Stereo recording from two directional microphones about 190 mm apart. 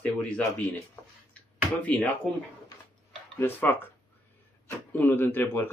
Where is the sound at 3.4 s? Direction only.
10° left (ahead or behind).